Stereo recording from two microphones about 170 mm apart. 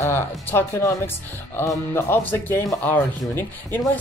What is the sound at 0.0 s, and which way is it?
Speech, 15° left (ahead or behind).